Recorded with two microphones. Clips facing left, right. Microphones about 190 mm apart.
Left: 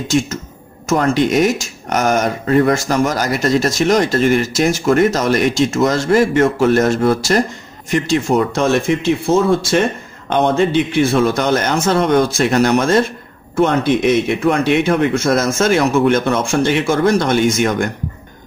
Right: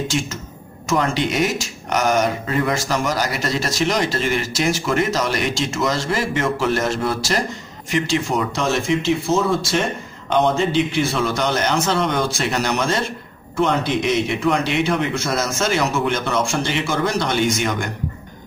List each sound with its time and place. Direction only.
0.8 s speech: 45° left (ahead or behind)